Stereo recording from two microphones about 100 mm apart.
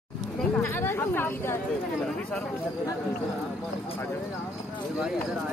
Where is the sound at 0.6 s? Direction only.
25° left (ahead or behind).